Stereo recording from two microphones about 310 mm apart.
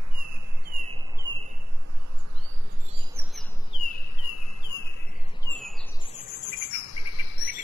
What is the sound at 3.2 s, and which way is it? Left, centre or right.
Bird, centre.